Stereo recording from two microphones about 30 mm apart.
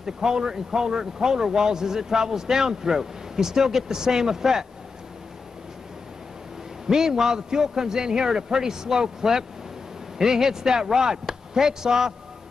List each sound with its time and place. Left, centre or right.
0.0 s speech: centre
6.9 s a man's voice: centre